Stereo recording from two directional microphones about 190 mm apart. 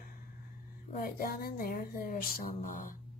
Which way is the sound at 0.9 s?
50° left (ahead or behind).